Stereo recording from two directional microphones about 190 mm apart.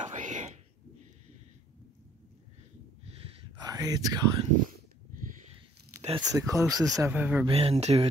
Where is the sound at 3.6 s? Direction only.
20° right (ahead or behind).